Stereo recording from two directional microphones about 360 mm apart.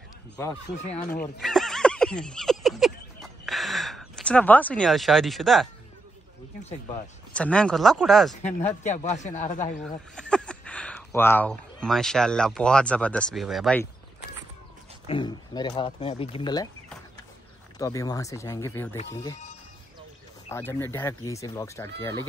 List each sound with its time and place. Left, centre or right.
0.9 s a sound: centre
7.3 s speech: centre
8.8 s speech: centre
9.8 s speech: centre
15.0 s speech: centre